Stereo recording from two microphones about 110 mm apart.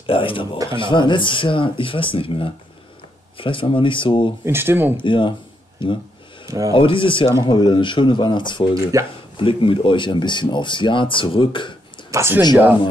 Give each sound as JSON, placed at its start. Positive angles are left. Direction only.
{"t": 0.0, "sound": "speech", "side_deg": 55}
{"t": 4.5, "sound": "speech", "side_deg": -20}
{"t": 4.9, "sound": "speech", "side_deg": 45}
{"t": 6.4, "sound": "speech", "side_deg": -30}
{"t": 6.7, "sound": "speech", "side_deg": 50}
{"t": 8.9, "sound": "speech", "side_deg": -30}
{"t": 9.4, "sound": "speech", "side_deg": 50}
{"t": 12.1, "sound": "speech", "side_deg": -25}